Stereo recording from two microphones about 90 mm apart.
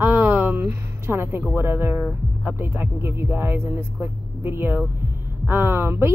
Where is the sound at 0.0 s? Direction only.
20° right (ahead or behind).